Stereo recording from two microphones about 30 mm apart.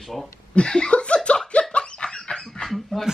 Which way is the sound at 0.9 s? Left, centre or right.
Left.